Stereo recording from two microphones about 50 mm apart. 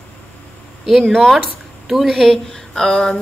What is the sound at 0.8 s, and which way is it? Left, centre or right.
A woman's voice, centre.